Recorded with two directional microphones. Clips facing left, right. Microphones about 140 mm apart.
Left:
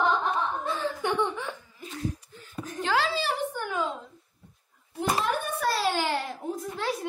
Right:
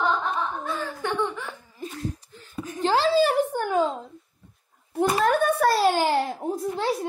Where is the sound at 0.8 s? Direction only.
20° left (ahead or behind).